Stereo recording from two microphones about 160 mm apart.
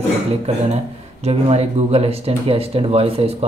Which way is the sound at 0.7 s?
40° right (ahead or behind).